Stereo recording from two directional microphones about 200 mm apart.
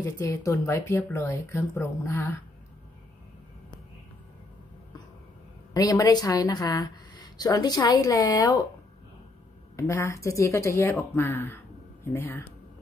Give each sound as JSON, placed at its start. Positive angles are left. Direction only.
{"t": 0.0, "sound": "speech", "side_deg": 15}
{"t": 5.7, "sound": "speech", "side_deg": 20}
{"t": 9.8, "sound": "speech", "side_deg": 15}